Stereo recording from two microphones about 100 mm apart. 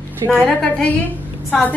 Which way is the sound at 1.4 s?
15° left (ahead or behind).